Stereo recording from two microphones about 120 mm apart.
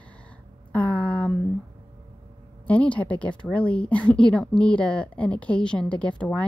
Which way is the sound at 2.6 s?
10° left (ahead or behind).